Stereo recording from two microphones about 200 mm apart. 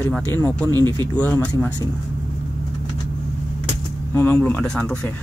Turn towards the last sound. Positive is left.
turn(degrees=5)  # may be behind; listen again after turning